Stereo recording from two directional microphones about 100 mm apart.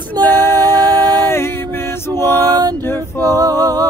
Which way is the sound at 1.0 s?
45° right (ahead or behind).